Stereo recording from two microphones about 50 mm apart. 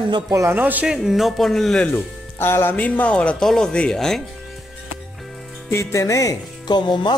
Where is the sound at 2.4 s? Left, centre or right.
Left.